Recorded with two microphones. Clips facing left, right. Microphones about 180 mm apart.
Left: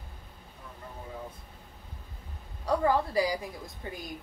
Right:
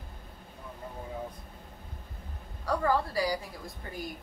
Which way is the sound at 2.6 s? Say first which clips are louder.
Left 2 dB; 15° left (ahead or behind).